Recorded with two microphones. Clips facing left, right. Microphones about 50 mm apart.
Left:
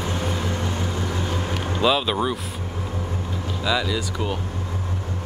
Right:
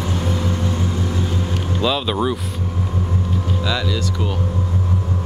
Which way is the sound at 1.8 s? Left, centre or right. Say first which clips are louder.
Right 1 dB; centre.